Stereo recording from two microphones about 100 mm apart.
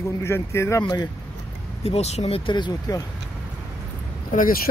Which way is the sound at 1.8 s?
90° left.